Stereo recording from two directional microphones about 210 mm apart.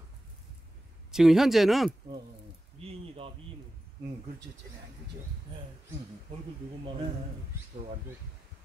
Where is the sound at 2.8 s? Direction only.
25° right (ahead or behind).